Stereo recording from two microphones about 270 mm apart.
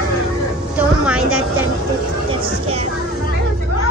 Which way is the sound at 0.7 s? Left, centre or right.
Centre.